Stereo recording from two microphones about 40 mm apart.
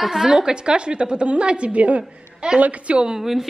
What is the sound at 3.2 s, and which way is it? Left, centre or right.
Speech, centre.